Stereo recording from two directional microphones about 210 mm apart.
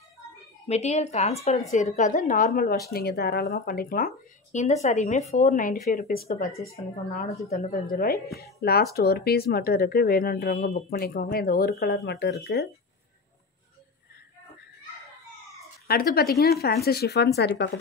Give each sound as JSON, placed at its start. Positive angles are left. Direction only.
{"t": 0.7, "sound": "speech", "side_deg": 30}
{"t": 6.5, "sound": "a woman's voice", "side_deg": 15}
{"t": 7.4, "sound": "speech", "side_deg": 40}
{"t": 15.9, "sound": "speech", "side_deg": 45}